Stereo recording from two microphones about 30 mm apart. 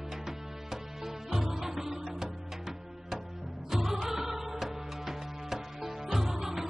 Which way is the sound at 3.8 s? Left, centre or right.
Centre.